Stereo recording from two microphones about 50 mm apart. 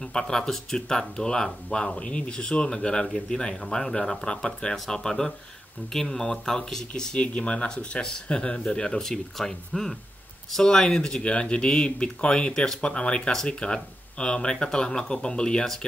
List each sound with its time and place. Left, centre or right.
0.1 s speech: centre
7.2 s speech: left